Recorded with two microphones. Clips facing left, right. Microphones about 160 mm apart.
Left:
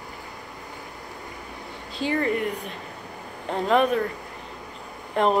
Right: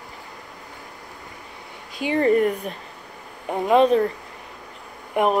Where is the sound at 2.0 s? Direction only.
15° right (ahead or behind).